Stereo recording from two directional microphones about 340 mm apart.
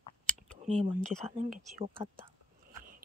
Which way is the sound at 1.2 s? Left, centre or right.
Centre.